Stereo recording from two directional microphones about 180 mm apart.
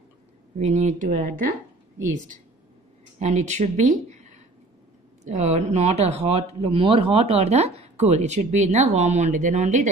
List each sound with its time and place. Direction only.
0.6 s speech: 40° right (ahead or behind)
3.2 s speech: 40° right (ahead or behind)